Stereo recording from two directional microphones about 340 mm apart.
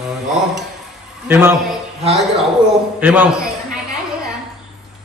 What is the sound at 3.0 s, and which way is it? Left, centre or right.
Speech, centre.